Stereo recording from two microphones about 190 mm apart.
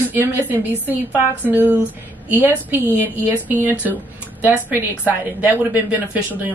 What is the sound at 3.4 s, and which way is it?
Speech, 10° right (ahead or behind).